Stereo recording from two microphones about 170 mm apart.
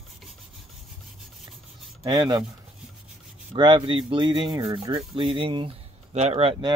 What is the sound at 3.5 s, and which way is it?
Speech, 30° right (ahead or behind).